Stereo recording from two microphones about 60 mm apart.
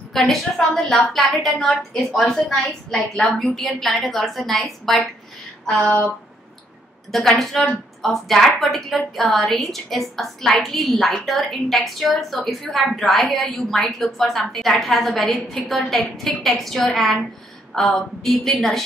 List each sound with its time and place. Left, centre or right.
0.1 s a woman's voice: centre
5.7 s a woman's voice: centre
7.1 s a woman's voice: centre